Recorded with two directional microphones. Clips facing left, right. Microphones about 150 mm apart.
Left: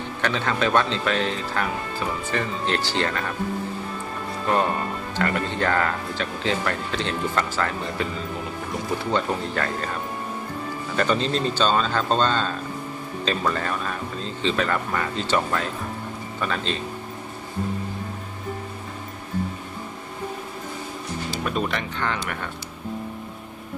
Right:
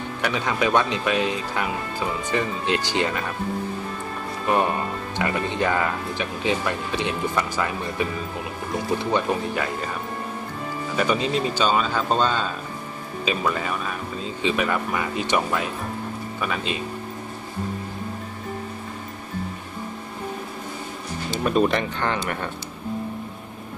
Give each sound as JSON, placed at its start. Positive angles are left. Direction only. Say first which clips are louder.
{"t": 0.2, "sound": "speech", "louder": "even", "side_deg": -15}
{"t": 5.1, "sound": "speech", "louder": "even", "side_deg": -15}
{"t": 9.1, "sound": "speech", "louder": "even", "side_deg": -10}
{"t": 11.0, "sound": "speech", "louder": "even", "side_deg": -10}
{"t": 21.5, "sound": "speech", "louder": "right 8 dB", "side_deg": -40}
{"t": 22.1, "sound": "speech", "louder": "right 3 dB", "side_deg": -30}